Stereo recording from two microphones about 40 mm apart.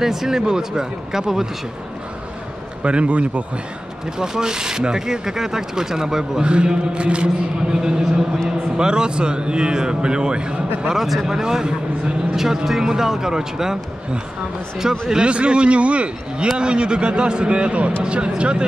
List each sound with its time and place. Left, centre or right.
0.0 s speech: centre
2.8 s a man's voice: right
4.2 s speech: centre
6.4 s a man's voice: right
7.7 s a man's voice: centre
10.9 s speech: centre
11.3 s speech: centre
15.2 s a man's voice: right